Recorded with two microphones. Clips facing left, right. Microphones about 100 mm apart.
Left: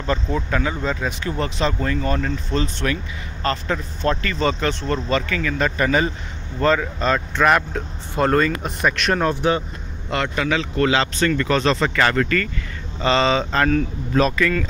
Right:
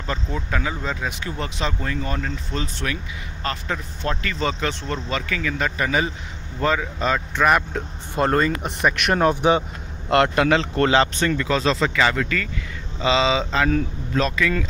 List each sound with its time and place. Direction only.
0.0 s speech: 5° right (ahead or behind)
8.2 s speech: 20° right (ahead or behind)
10.2 s speech: 50° right (ahead or behind)
10.9 s speech: 20° right (ahead or behind); by 14.5 s 5° left (ahead or behind)